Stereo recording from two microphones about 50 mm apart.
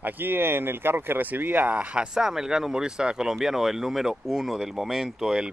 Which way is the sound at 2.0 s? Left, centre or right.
Centre.